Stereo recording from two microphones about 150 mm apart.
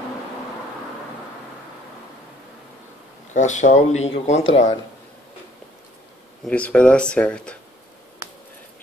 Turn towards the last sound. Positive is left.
turn(degrees=5)  # may be behind; listen again after turning